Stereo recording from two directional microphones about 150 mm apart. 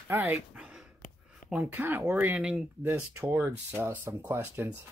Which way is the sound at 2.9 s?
20° right (ahead or behind).